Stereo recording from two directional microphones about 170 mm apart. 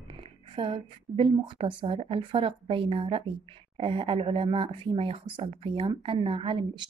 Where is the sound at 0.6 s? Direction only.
30° right (ahead or behind).